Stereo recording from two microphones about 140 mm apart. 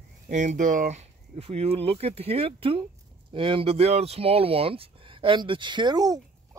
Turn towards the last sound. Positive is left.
turn(degrees=-30)  # may be behind; listen again after turning